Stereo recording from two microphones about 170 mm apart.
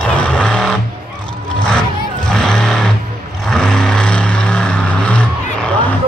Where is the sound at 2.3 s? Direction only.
5° left (ahead or behind).